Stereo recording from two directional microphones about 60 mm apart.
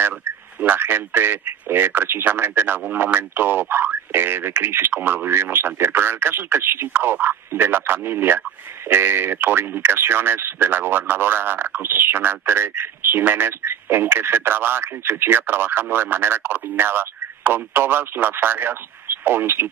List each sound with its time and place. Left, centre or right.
0.7 s speech: right